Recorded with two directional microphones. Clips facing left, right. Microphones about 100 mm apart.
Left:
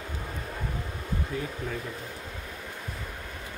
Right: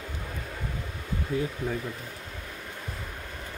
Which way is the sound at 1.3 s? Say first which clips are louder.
Right 6 dB; 30° right (ahead or behind).